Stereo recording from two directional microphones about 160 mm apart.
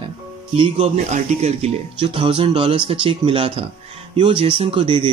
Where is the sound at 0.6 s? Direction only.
40° right (ahead or behind).